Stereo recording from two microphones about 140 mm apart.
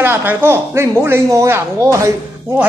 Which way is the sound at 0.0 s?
15° right (ahead or behind).